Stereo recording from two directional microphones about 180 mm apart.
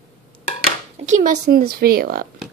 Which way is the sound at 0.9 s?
40° right (ahead or behind).